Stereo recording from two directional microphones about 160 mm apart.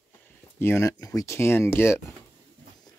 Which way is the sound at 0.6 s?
15° left (ahead or behind).